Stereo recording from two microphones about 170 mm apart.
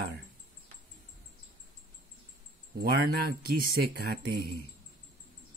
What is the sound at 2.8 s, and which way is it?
Speech, 65° right (ahead or behind).